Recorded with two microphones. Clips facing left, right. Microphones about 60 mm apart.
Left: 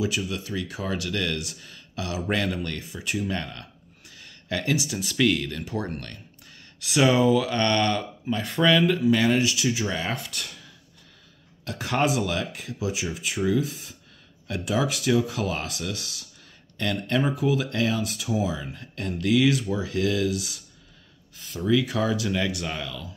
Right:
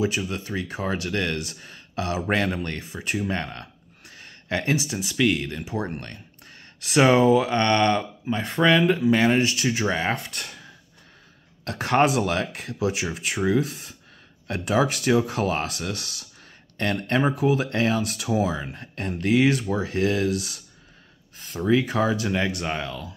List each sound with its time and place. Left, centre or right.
0.0 s speech: right
5.0 s speech: centre
6.4 s speech: right
11.6 s speech: right